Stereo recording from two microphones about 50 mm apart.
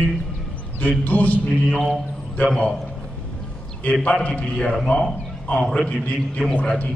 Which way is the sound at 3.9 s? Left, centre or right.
Left.